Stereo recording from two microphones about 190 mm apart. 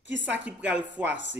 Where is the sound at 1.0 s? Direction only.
70° right (ahead or behind).